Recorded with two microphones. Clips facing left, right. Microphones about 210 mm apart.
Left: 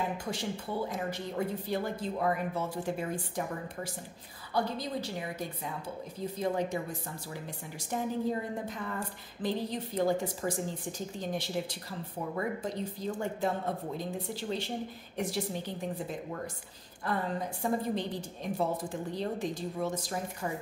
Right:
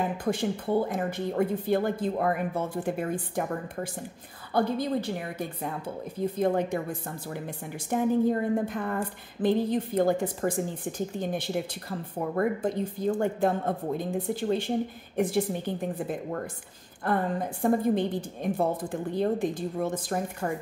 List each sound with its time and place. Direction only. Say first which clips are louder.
0.2 s a woman's voice: right 8 dB; 55° right (ahead or behind)
6.1 s a woman's voice: right 6 dB; 55° right (ahead or behind)